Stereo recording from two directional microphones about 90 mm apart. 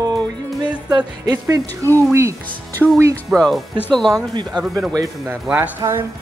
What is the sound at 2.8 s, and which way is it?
Speech, 5° right (ahead or behind).